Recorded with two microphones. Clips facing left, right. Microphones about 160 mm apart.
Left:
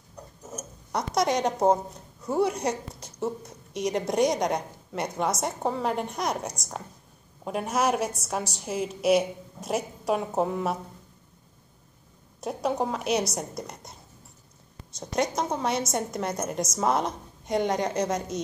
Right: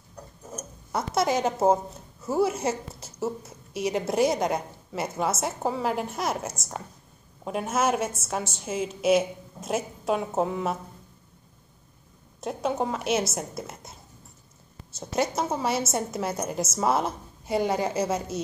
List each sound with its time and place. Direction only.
0.9 s a woman's voice: 5° right (ahead or behind)
12.4 s a woman's voice: centre (ahead or behind)